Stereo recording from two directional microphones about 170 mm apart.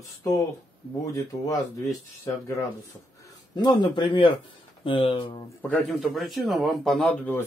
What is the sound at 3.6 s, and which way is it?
Speech, 25° left (ahead or behind).